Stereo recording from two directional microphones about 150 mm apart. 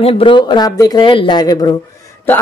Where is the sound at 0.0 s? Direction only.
35° left (ahead or behind).